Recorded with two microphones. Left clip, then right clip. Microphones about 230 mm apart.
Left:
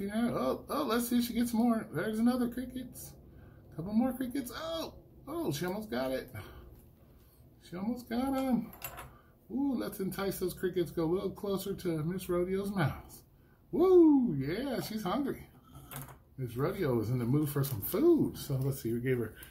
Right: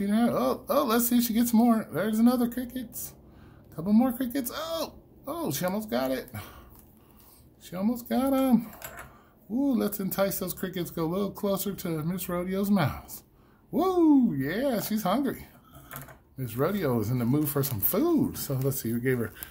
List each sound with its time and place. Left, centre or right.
0.0 s speech: right
7.7 s speech: right
9.7 s speech: right
16.4 s speech: right